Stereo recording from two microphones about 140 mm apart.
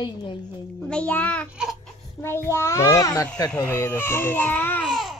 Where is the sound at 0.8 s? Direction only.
10° left (ahead or behind).